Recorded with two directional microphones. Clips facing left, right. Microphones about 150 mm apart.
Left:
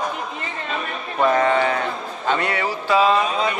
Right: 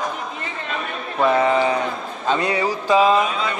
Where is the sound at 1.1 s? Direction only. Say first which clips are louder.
Right 1 dB; 5° right (ahead or behind).